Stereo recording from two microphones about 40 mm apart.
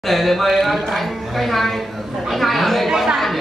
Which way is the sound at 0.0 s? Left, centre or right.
Centre.